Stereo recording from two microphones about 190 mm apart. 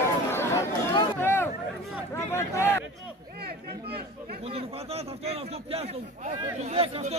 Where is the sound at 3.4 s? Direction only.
55° right (ahead or behind).